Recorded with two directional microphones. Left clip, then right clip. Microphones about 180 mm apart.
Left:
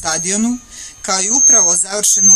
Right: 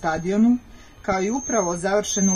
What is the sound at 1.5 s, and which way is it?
Speech, 25° right (ahead or behind).